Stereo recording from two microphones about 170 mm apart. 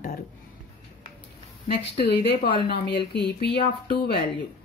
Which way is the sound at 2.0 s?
70° left (ahead or behind).